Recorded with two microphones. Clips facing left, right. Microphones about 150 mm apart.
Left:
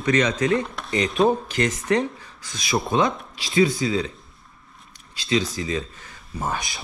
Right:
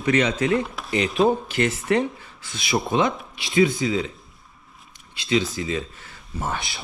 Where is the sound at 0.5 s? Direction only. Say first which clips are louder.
Even; 5° right (ahead or behind).